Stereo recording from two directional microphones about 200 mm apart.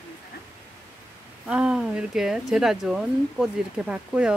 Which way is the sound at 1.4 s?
5° right (ahead or behind).